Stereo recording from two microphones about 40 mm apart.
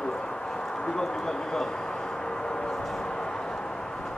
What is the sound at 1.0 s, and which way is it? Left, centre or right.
Speech, centre.